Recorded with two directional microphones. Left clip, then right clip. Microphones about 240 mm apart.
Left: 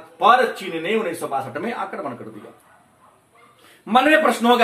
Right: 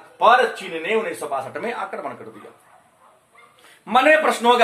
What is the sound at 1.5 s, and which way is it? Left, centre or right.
Speech, centre.